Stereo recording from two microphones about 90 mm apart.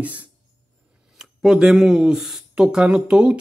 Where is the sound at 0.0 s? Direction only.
15° right (ahead or behind).